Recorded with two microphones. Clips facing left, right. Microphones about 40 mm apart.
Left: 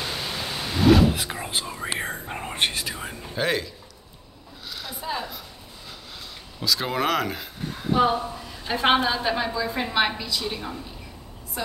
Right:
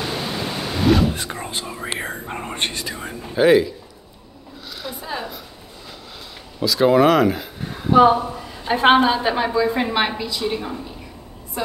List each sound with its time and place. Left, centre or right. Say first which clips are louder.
0.0 s pink noise: right 5 dB; centre
1.2 s speech: right 1 dB; centre
2.0 s whispering: right 2 dB; centre
3.3 s a woman's voice: right 11 dB; centre
4.8 s a sound: right 2 dB; centre
6.6 s speech: right 10 dB; centre
7.9 s a woman's voice: right 8 dB; right
11.6 s a woman's voice: right 5 dB; centre